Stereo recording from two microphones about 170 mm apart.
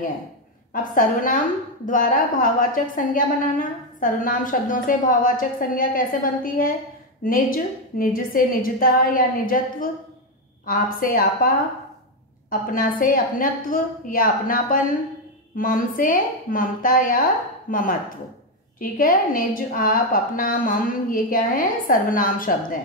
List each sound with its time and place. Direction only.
0.9 s a woman's voice: 50° left (ahead or behind)